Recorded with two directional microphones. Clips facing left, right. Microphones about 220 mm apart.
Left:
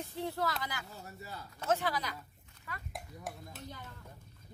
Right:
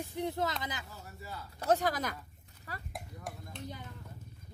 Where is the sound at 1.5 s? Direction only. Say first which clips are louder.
Right 3 dB; 40° right (ahead or behind).